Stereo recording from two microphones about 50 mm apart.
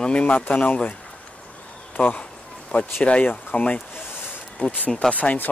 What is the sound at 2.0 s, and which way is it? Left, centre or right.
Speech, left.